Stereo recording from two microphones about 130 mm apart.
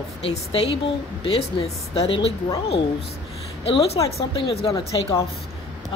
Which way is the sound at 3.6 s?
50° left (ahead or behind).